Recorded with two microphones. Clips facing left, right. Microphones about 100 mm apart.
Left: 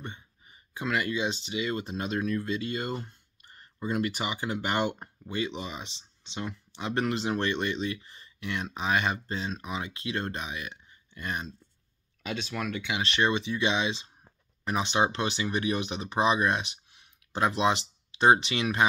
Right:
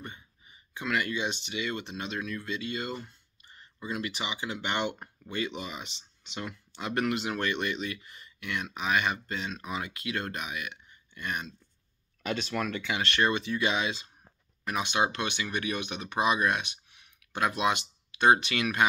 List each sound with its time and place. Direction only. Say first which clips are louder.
0.5 s speech: left 1 dB; 30° left (ahead or behind)
4.9 s speech: left 2 dB; 25° left (ahead or behind)
12.2 s speech: right 2 dB; 5° left (ahead or behind); by 18.9 s 25° left (ahead or behind)